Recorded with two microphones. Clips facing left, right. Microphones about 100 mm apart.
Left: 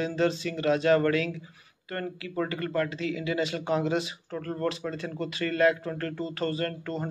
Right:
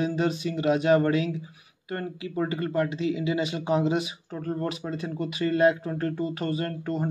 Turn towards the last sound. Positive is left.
turn(degrees=-15)  # may be behind; listen again after turning